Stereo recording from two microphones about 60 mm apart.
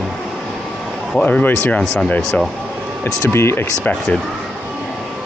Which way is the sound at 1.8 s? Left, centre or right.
Centre.